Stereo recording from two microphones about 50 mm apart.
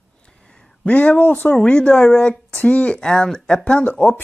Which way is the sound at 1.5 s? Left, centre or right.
Centre.